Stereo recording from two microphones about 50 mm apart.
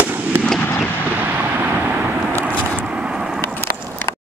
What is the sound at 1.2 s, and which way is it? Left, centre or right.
Vehicle, right.